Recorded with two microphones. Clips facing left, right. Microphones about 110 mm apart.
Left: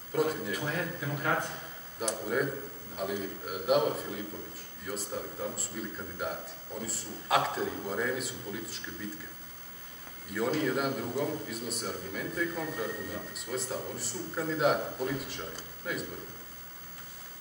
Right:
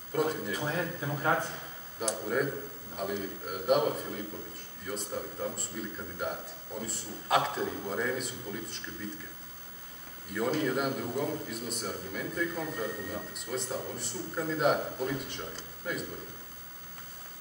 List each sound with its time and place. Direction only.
0.1 s a man's voice: centre (ahead or behind)
0.6 s a man's voice: 20° right (ahead or behind)
2.0 s a man's voice: centre (ahead or behind)
10.3 s a man's voice: centre (ahead or behind)